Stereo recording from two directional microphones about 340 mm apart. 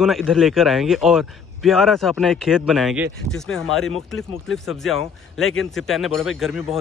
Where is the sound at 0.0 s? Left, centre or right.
Centre.